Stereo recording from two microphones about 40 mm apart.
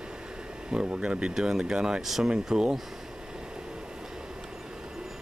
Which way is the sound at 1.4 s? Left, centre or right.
Centre.